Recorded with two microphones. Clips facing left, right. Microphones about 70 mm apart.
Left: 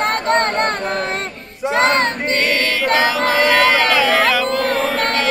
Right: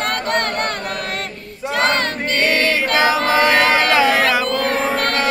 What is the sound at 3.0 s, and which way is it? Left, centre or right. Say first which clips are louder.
Music: right 3 dB; right.